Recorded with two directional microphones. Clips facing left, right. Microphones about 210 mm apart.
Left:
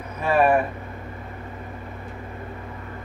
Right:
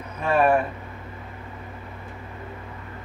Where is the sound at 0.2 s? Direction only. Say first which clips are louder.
Left 1 dB; 5° left (ahead or behind).